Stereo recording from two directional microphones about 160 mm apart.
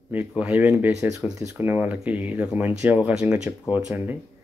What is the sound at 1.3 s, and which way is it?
Speech, 15° right (ahead or behind).